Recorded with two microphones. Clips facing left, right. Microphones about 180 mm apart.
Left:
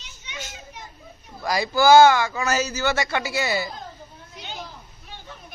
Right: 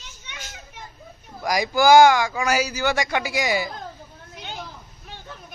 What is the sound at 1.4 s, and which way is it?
Speech, 15° right (ahead or behind).